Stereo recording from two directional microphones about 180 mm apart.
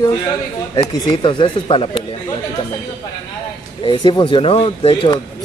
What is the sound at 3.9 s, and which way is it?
Speech, 25° left (ahead or behind).